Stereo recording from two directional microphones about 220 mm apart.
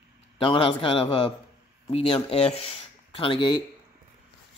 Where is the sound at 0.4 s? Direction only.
25° left (ahead or behind).